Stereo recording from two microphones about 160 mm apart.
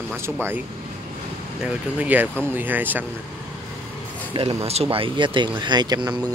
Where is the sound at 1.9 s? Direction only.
10° right (ahead or behind).